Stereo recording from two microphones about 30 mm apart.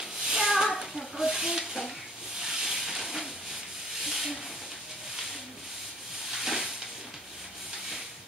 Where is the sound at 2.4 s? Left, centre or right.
Centre.